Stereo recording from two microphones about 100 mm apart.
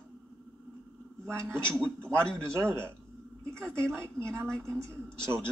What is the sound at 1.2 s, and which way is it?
Speech, 25° right (ahead or behind).